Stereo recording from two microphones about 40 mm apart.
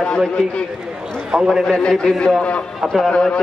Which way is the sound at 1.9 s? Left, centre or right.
Left.